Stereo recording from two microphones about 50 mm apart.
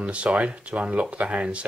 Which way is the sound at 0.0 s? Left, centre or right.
Right.